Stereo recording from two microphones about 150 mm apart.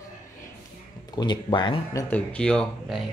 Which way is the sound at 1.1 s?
30° left (ahead or behind).